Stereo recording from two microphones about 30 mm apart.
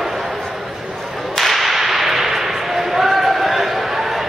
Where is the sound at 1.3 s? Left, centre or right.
Centre.